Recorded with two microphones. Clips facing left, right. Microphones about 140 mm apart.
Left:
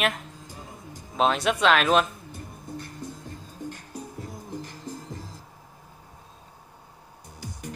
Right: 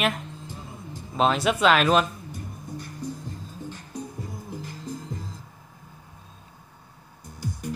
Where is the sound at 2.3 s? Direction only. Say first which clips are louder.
Right 1 dB; 55° left (ahead or behind).